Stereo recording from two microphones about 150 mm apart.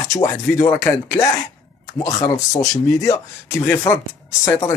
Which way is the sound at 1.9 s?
20° left (ahead or behind).